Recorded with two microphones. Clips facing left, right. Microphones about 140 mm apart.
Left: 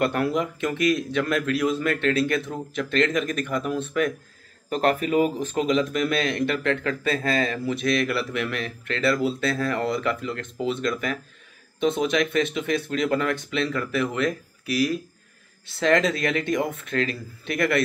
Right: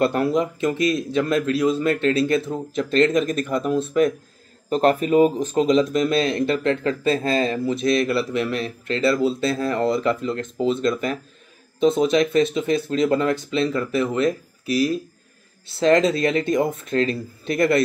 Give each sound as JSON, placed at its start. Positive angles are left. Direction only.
{"t": 0.0, "sound": "speech", "side_deg": -30}